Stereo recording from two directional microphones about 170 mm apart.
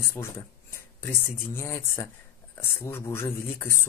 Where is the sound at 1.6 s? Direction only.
15° left (ahead or behind).